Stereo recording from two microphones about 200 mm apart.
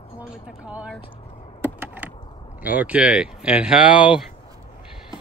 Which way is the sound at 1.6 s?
10° right (ahead or behind).